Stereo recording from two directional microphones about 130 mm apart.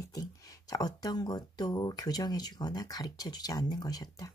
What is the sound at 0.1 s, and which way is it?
Speech, 30° left (ahead or behind).